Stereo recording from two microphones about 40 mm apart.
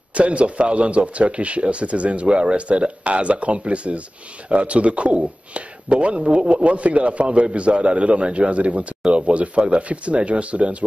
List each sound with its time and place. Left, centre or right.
0.1 s speech: right